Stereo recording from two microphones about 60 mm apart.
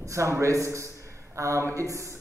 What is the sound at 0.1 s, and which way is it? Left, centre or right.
Speech, right.